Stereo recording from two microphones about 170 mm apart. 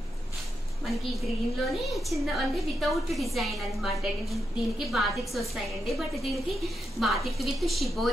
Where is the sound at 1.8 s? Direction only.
Centre (ahead or behind).